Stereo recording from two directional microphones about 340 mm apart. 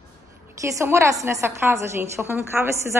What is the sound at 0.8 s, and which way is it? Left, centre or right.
A woman's voice, centre.